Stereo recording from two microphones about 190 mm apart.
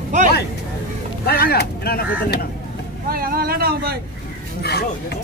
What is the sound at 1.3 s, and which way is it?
Speech, 55° left (ahead or behind).